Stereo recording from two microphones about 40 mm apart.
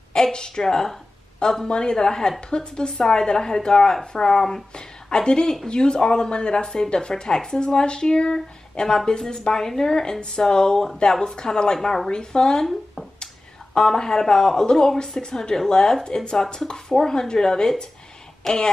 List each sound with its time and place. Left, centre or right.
0.1 s speech: centre
13.7 s speech: centre